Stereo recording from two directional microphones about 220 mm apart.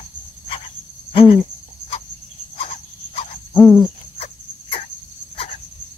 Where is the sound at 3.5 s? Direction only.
10° left (ahead or behind).